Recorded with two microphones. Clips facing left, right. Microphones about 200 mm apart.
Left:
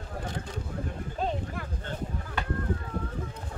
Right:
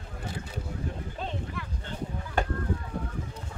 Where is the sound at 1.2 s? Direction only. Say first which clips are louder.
Left 6 dB; 45° left (ahead or behind).